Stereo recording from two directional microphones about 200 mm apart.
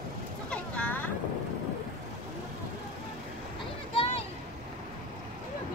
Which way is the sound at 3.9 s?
25° left (ahead or behind).